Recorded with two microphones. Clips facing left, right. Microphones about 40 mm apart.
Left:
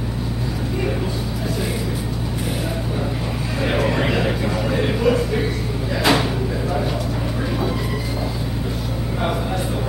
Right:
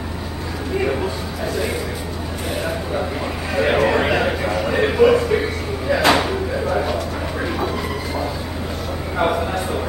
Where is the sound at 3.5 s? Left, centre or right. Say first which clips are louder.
Right 4 dB; right.